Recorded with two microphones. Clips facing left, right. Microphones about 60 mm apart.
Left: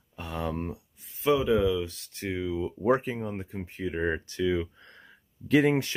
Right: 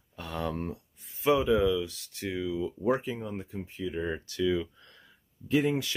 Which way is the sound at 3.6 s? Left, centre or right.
Left.